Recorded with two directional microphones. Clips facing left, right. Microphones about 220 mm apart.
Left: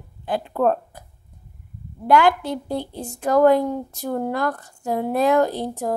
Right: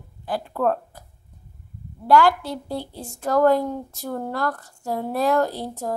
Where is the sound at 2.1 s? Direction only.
20° left (ahead or behind).